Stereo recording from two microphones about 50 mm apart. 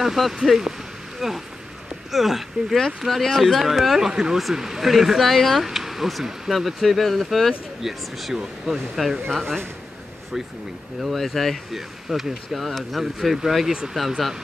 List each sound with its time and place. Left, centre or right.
0.0 s speech: centre
9.3 s speech: centre
11.0 s speech: centre